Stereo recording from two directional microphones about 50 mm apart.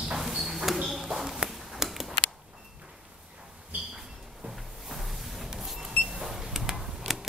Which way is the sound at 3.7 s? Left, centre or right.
Right.